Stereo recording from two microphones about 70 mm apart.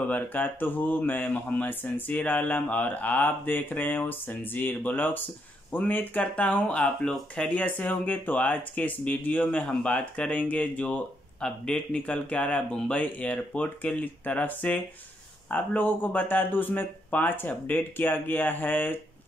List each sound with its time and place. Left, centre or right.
0.1 s speech: left